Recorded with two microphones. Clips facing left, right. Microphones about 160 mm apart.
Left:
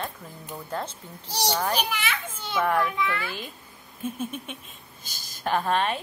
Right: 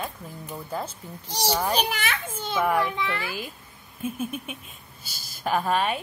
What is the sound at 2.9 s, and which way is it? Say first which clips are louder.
Speech: left 1 dB; 30° right (ahead or behind).